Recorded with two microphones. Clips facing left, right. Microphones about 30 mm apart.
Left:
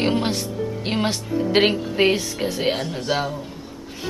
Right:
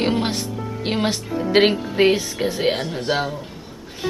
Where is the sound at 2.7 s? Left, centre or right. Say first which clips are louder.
Right 1 dB; right.